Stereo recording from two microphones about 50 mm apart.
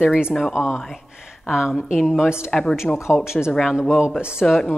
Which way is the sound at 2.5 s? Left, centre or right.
Centre.